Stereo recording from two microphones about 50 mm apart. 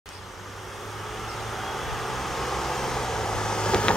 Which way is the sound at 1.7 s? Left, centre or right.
Centre.